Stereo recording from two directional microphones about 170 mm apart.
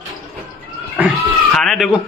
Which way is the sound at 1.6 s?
Centre (ahead or behind).